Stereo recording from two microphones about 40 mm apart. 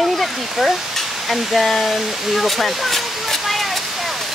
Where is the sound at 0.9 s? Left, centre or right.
Centre.